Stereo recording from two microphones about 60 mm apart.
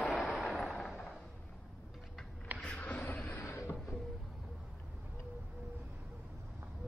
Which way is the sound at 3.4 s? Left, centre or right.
Left.